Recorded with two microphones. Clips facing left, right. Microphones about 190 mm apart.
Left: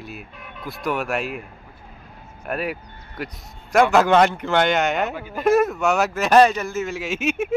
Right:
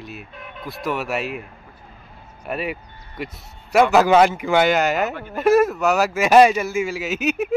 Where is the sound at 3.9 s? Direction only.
5° right (ahead or behind).